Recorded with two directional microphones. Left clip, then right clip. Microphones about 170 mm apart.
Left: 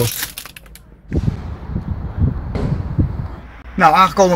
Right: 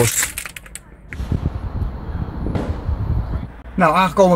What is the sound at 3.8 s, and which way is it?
Speech, centre (ahead or behind).